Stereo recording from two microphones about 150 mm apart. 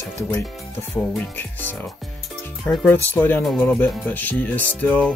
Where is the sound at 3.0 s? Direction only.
15° left (ahead or behind).